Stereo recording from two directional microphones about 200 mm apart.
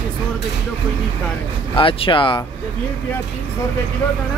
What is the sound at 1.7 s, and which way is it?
Speech, 25° left (ahead or behind).